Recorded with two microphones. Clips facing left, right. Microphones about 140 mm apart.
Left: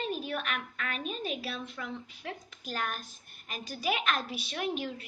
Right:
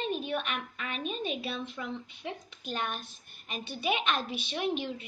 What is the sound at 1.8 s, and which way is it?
Speech, 15° right (ahead or behind).